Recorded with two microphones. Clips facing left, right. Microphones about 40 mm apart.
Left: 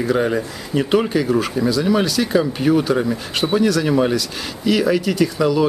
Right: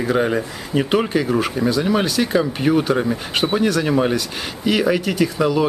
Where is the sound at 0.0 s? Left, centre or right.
Centre.